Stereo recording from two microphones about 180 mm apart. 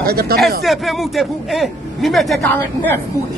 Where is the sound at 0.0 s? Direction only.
60° right (ahead or behind).